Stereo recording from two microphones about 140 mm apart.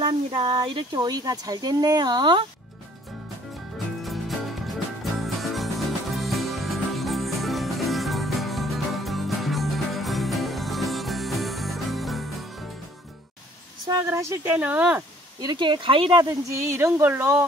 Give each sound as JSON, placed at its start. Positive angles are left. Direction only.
{"t": 0.0, "sound": "speech", "side_deg": -35}
{"t": 5.2, "sound": "music", "side_deg": 0}
{"t": 13.8, "sound": "speech", "side_deg": -20}
{"t": 15.4, "sound": "speech", "side_deg": -35}
{"t": 16.3, "sound": "speech", "side_deg": -20}